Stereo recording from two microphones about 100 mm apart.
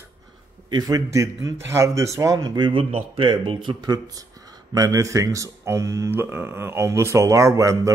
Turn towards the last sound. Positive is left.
turn(degrees=-35)  # may be behind; listen again after turning